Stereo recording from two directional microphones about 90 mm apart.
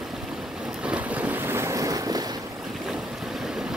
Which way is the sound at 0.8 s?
15° right (ahead or behind).